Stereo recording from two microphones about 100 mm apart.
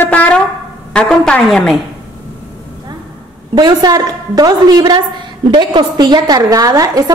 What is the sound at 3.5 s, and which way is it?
A woman's voice, 45° right (ahead or behind).